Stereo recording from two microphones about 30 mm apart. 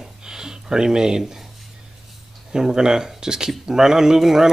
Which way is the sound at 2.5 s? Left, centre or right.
Right.